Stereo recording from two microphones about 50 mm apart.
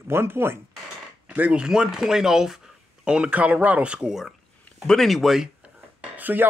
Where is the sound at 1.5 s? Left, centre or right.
Centre.